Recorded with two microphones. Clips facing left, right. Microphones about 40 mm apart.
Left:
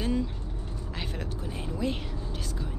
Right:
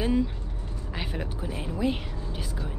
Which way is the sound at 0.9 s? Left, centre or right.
Centre.